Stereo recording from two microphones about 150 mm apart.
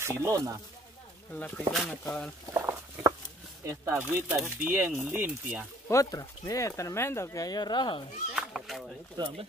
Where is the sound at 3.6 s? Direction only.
20° right (ahead or behind).